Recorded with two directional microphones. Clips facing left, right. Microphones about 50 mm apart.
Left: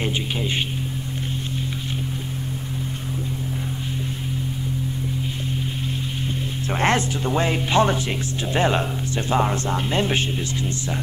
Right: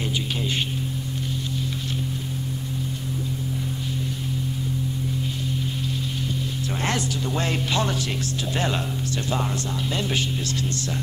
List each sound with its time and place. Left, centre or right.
0.4 s speech: centre
6.7 s speech: left
10.4 s speech: left